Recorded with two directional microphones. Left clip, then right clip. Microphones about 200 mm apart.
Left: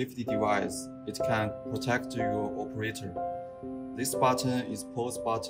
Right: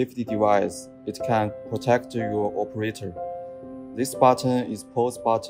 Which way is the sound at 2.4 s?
90° right.